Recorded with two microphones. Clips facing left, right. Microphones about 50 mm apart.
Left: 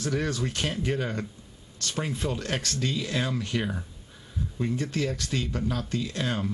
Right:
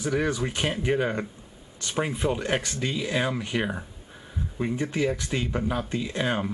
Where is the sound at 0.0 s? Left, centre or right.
Centre.